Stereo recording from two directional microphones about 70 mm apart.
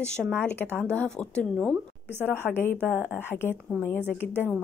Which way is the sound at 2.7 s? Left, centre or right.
Right.